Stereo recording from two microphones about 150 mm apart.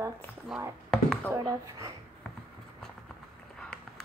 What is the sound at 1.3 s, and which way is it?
Speech, 25° right (ahead or behind).